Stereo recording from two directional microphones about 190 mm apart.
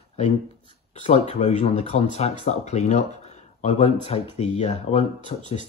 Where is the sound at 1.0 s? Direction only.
35° left (ahead or behind).